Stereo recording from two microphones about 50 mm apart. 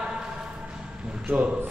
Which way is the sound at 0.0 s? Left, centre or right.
Centre.